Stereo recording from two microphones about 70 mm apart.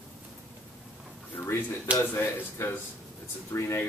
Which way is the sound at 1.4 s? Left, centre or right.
Left.